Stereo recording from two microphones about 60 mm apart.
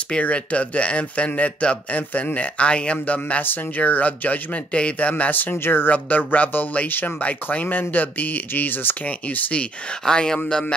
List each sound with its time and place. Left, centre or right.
0.1 s speech: left
10.0 s speech: centre